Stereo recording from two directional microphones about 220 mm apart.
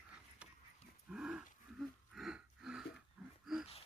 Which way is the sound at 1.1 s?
5° right (ahead or behind).